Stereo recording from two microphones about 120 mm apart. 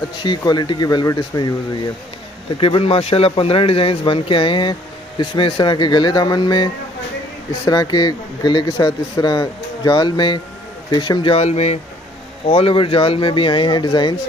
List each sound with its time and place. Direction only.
0.1 s a man's voice: 40° left (ahead or behind)
2.6 s a man's voice: 50° left (ahead or behind)
11.4 s speech: 65° left (ahead or behind)
12.4 s speech: 50° left (ahead or behind)